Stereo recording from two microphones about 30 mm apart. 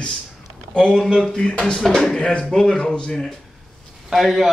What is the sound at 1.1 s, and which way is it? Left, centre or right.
Speech, left.